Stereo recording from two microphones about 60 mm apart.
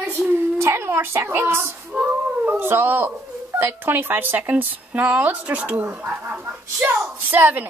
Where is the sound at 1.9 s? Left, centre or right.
Right.